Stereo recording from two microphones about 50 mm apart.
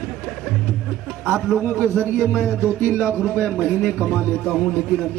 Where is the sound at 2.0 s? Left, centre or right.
Left.